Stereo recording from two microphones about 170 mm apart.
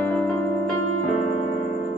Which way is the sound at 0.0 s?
5° left (ahead or behind).